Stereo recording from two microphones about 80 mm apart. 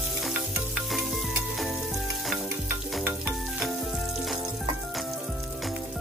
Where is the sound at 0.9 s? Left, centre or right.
Centre.